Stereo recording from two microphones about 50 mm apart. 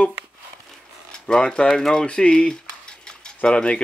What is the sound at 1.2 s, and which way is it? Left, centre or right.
Speech, centre.